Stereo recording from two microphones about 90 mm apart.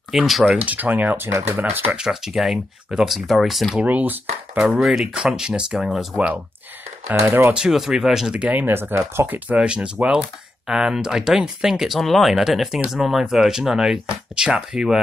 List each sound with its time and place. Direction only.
0.1 s speech: centre (ahead or behind)
0.7 s speech: 20° right (ahead or behind)
2.0 s speech: 5° right (ahead or behind)
3.8 s speech: 20° right (ahead or behind)
4.6 s speech: 5° right (ahead or behind)
7.1 s speech: 30° right (ahead or behind)
7.5 s speech: 5° right (ahead or behind); by 9.2 s 25° right (ahead or behind)
9.3 s speech: 15° right (ahead or behind)